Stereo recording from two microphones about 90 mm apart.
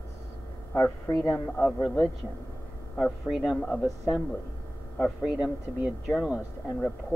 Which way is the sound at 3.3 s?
5° right (ahead or behind).